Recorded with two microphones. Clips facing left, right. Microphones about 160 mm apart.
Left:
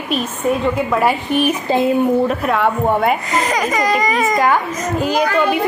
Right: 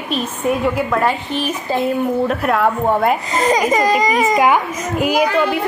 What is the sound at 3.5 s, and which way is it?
A woman's voice, 25° right (ahead or behind).